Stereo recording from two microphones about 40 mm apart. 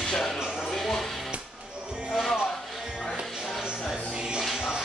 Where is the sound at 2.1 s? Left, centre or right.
Centre.